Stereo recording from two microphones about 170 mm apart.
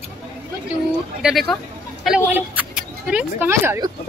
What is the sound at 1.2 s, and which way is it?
A woman's voice, centre (ahead or behind).